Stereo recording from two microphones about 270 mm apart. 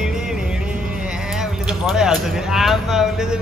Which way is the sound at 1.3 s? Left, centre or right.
Centre.